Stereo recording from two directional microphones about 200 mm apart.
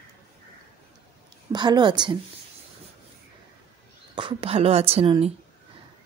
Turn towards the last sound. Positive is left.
turn(degrees=-30)  # may be behind; listen again after turning